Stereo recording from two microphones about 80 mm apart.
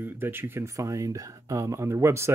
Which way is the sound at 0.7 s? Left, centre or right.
Right.